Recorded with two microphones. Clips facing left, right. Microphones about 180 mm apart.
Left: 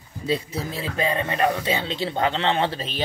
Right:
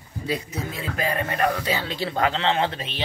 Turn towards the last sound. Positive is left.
turn(degrees=35)  # may be behind; listen again after turning